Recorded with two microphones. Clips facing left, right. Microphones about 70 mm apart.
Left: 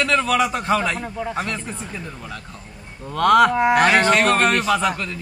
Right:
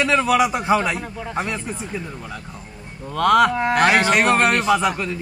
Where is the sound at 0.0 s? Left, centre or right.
Centre.